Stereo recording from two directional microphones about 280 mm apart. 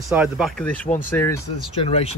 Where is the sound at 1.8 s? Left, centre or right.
Left.